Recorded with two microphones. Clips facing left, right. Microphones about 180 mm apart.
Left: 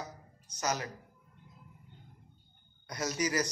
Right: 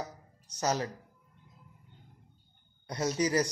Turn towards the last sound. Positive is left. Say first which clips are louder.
# right 4 dB
turn(degrees=-30)  # may be behind; listen again after turning